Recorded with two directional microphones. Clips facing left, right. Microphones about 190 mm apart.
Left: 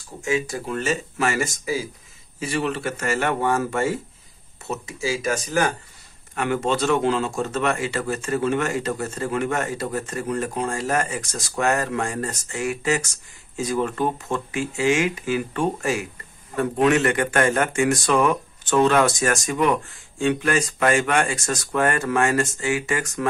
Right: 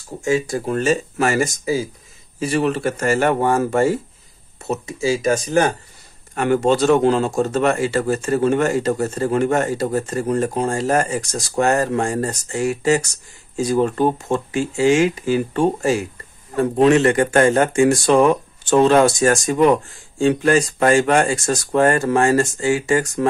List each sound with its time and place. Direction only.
0.2 s a man's voice: 40° right (ahead or behind)
6.3 s a man's voice: 40° right (ahead or behind)